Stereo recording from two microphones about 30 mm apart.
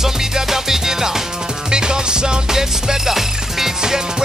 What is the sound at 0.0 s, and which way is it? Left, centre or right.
Music, centre.